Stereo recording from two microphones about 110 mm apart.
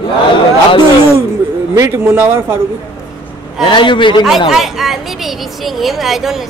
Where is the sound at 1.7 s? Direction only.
25° right (ahead or behind).